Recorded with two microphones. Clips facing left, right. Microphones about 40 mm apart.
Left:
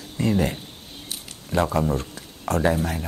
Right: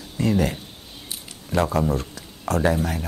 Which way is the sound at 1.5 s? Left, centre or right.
Left.